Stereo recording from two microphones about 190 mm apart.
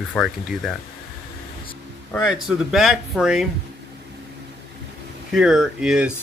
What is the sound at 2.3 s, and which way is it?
Speech, centre (ahead or behind).